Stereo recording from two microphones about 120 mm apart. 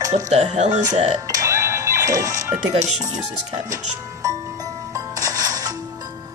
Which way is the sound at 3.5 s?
30° right (ahead or behind).